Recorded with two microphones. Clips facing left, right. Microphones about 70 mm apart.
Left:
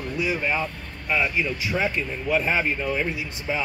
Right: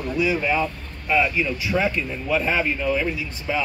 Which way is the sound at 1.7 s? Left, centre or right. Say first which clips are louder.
Right 4 dB; centre.